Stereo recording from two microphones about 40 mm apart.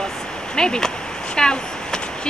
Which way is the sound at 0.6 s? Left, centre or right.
Centre.